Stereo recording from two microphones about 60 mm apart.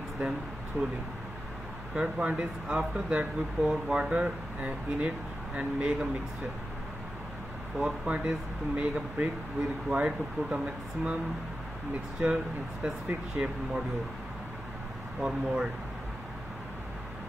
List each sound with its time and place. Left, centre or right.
0.8 s speech: right
2.0 s speech: centre
7.8 s speech: centre
12.2 s speech: right
13.4 s speech: right
15.1 s speech: centre